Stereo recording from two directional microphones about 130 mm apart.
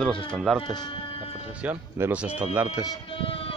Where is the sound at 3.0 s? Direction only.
45° left (ahead or behind).